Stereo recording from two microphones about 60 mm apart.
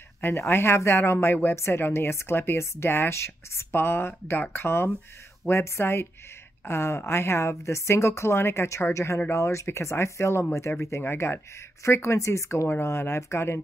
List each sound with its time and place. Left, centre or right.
0.2 s a woman's voice: left
10.7 s a woman's voice: left